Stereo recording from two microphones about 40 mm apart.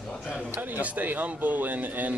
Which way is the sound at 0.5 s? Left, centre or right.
Right.